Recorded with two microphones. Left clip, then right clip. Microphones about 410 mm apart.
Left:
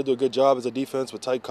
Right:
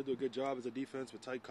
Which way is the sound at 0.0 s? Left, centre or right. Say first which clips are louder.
Left 17 dB; left.